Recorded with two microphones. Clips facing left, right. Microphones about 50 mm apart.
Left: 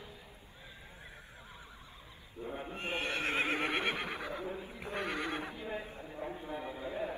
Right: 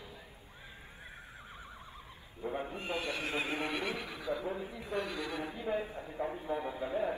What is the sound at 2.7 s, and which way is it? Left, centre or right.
Neigh, left.